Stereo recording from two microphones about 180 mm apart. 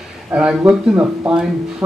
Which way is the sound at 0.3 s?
5° right (ahead or behind).